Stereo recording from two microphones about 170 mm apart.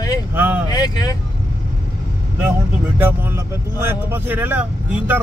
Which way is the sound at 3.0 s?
15° right (ahead or behind).